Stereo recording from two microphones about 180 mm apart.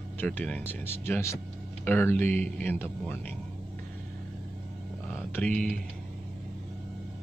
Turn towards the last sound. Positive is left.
turn(degrees=5)  # may be behind; listen again after turning